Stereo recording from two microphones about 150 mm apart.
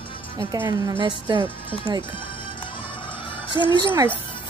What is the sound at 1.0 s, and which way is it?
Speech, 30° right (ahead or behind).